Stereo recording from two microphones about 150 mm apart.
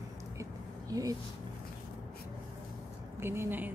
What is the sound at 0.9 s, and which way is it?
Speech, 25° right (ahead or behind).